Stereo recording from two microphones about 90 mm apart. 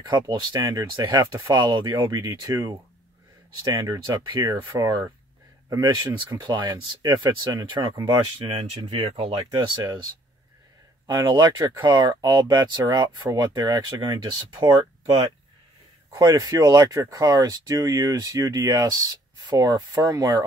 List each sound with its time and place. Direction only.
0.1 s speech: 55° right (ahead or behind)
0.7 s speech: 40° right (ahead or behind)
1.7 s speech: 60° right (ahead or behind)
2.0 s speech: 40° right (ahead or behind)
3.8 s speech: 45° right (ahead or behind)
4.7 s speech: 40° right (ahead or behind)
8.5 s speech: 75° right (ahead or behind)
11.1 s speech: 55° right (ahead or behind)
16.1 s speech: 40° right (ahead or behind)